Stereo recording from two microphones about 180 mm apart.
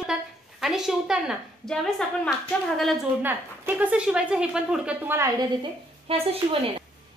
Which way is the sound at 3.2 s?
10° right (ahead or behind).